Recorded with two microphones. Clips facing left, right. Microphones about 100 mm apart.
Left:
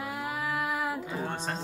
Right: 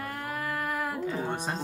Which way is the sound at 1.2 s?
10° right (ahead or behind).